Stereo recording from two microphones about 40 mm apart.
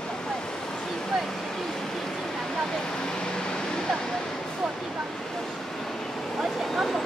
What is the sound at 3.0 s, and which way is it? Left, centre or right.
Vehicle, centre.